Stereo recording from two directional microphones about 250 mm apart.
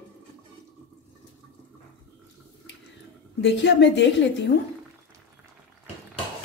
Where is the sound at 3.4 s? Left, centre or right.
Left.